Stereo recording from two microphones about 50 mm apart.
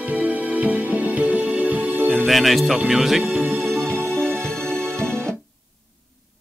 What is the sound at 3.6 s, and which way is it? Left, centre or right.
Music, centre.